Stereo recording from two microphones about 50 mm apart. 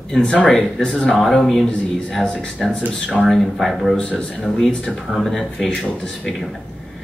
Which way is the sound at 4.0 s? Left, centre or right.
Left.